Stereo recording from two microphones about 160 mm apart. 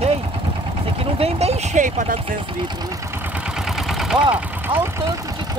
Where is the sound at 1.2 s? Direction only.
45° right (ahead or behind).